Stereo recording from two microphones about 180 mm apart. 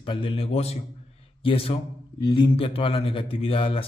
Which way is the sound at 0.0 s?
30° left (ahead or behind).